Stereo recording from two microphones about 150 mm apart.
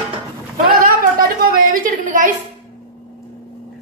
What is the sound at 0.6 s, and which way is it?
A woman's voice, 75° right (ahead or behind).